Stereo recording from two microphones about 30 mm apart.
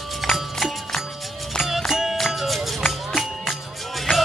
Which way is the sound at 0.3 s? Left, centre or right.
Centre.